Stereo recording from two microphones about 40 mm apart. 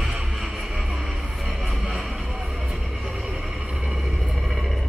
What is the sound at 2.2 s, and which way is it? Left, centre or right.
Music, centre.